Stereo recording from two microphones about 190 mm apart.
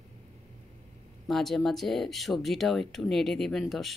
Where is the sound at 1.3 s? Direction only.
Centre (ahead or behind).